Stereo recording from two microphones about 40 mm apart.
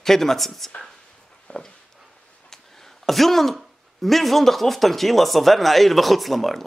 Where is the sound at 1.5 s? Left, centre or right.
Left.